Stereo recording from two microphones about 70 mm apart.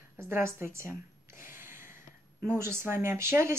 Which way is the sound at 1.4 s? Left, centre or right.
Right.